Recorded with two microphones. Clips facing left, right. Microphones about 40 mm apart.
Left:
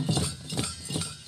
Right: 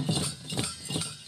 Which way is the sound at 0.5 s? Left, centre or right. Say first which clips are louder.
Even; right.